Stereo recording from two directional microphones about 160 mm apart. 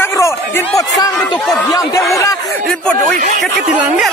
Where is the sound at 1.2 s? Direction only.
5° left (ahead or behind).